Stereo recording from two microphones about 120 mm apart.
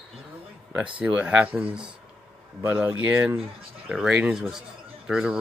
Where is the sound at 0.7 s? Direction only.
10° right (ahead or behind).